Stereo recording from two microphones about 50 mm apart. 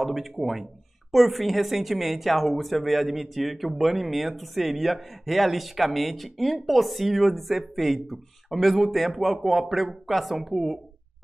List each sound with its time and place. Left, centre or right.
0.0 s speech: centre